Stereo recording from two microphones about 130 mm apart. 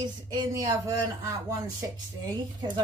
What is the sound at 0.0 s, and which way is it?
Speech, 30° right (ahead or behind).